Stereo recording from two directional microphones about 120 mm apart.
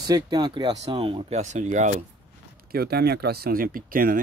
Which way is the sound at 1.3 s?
80° right.